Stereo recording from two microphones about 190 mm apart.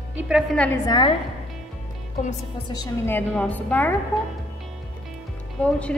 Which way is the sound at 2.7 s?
15° left (ahead or behind).